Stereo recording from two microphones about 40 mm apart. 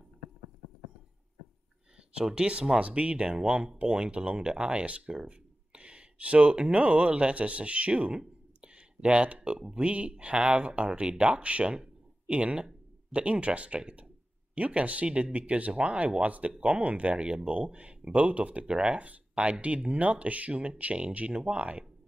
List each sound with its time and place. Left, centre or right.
2.1 s speech: right
8.5 s a sound: right
9.8 s speech: right
18.7 s speech: right
18.9 s speech: right